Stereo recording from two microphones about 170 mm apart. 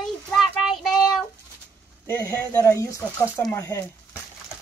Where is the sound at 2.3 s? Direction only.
15° left (ahead or behind).